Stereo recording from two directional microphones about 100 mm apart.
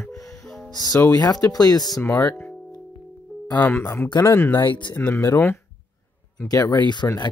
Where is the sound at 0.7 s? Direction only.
40° left (ahead or behind).